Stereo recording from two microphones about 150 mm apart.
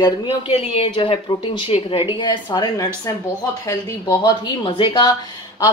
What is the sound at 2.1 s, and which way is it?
A woman's voice, 30° left (ahead or behind).